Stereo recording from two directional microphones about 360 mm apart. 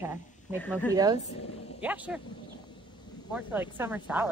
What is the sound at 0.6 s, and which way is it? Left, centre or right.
Speech, centre.